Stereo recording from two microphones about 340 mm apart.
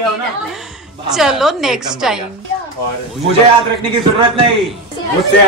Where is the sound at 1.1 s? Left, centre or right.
Centre.